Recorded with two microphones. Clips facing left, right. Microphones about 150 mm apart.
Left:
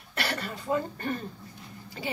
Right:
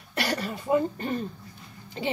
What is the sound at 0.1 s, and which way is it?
Speech, 20° right (ahead or behind).